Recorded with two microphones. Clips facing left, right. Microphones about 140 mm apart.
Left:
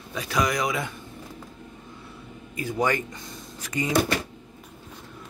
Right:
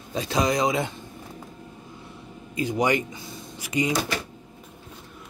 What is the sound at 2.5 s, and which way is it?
Speech, 20° right (ahead or behind).